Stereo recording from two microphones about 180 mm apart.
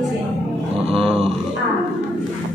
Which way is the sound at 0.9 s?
35° right (ahead or behind).